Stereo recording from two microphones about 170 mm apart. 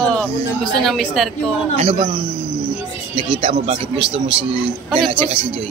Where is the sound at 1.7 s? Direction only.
35° right (ahead or behind).